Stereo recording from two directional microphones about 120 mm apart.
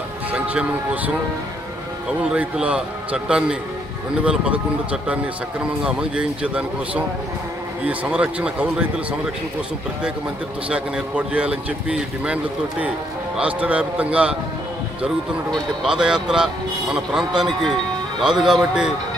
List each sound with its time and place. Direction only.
0.3 s speech: 15° right (ahead or behind)
5.9 s speech: 10° right (ahead or behind)
10.7 s speech: 10° right (ahead or behind)
13.4 s speech: 10° right (ahead or behind)
15.5 s speech: 5° right (ahead or behind)